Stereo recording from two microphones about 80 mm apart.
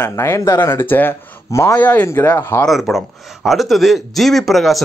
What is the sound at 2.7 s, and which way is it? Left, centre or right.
Speech, centre.